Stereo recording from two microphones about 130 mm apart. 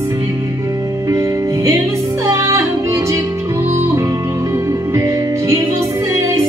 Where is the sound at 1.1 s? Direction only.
25° right (ahead or behind).